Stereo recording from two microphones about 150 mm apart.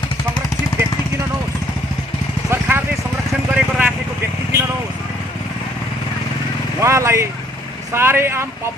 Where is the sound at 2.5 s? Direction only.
15° right (ahead or behind).